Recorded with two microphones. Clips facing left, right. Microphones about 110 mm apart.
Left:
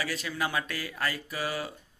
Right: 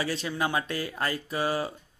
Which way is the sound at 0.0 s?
30° right (ahead or behind).